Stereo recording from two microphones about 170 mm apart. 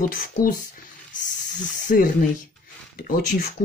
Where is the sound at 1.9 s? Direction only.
50° left (ahead or behind).